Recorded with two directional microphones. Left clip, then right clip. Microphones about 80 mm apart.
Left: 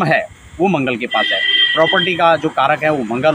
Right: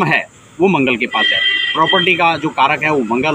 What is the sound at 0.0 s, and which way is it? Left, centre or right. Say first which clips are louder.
Speech: even; left.